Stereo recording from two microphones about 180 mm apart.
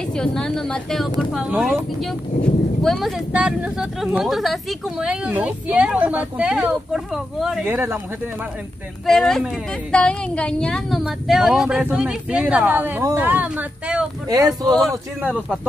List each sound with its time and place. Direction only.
0.1 s speech: 5° left (ahead or behind)
7.7 s speech: 10° right (ahead or behind)
9.0 s speech: centre (ahead or behind)
14.3 s speech: 20° right (ahead or behind)